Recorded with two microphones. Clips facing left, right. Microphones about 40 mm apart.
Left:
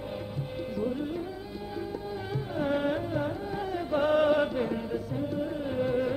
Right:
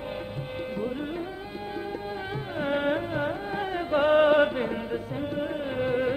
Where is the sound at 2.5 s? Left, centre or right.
Right.